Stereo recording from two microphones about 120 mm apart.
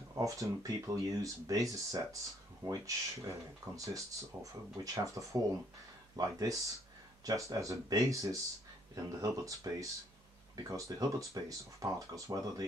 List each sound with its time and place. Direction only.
0.2 s speech: 30° right (ahead or behind)